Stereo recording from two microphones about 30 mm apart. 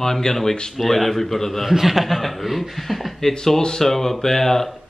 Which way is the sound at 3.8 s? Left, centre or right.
Centre.